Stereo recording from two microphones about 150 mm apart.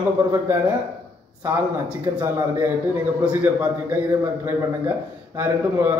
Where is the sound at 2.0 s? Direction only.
20° right (ahead or behind).